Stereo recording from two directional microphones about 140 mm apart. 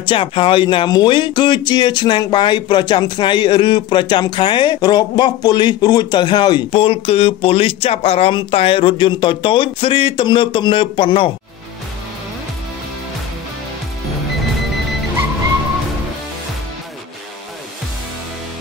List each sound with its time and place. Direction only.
0.0 s speech: 35° left (ahead or behind)